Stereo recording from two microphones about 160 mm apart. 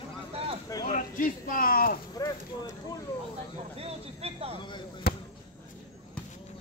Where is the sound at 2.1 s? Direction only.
20° left (ahead or behind).